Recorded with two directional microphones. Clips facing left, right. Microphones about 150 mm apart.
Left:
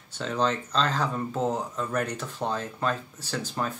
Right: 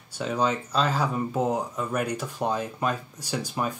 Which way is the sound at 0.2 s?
10° right (ahead or behind).